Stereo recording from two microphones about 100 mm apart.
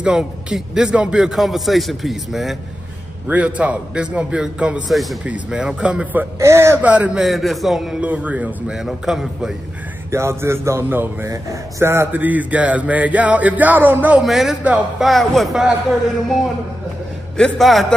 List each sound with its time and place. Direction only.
0.0 s a man's voice: 10° right (ahead or behind)
3.3 s speech: 15° right (ahead or behind)
6.4 s speech: 25° right (ahead or behind)
6.8 s speech: 15° right (ahead or behind)
7.2 s a man's voice: centre (ahead or behind)
8.0 s speech: 15° right (ahead or behind)
8.7 s a man's voice: 5° right (ahead or behind)
10.1 s speech: 25° right (ahead or behind)
14.2 s a man's voice: centre (ahead or behind)
17.4 s a man's voice: centre (ahead or behind)